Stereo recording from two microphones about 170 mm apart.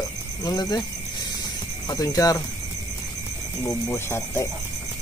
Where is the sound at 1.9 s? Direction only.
20° left (ahead or behind).